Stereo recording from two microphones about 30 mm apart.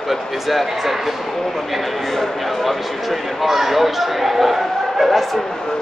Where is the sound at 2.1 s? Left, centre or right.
Centre.